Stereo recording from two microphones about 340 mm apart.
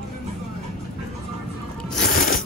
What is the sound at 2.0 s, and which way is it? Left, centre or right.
Music, left.